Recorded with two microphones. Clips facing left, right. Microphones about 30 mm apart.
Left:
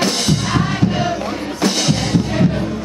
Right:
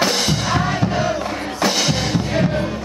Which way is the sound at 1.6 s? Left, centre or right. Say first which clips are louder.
Left 1 dB; centre.